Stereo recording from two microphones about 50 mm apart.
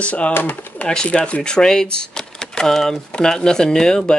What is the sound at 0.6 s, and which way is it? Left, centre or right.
Pigeon, left.